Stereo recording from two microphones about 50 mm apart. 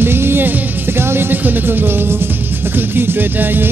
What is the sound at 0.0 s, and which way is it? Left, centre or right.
Music, right.